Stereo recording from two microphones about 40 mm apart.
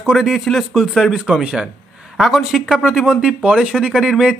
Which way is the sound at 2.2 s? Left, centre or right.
Centre.